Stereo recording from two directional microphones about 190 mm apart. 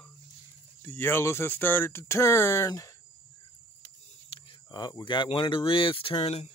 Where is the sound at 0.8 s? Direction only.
10° left (ahead or behind).